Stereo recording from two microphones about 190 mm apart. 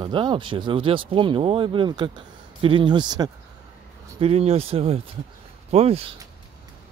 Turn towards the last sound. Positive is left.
turn(degrees=-30)  # may be behind; listen again after turning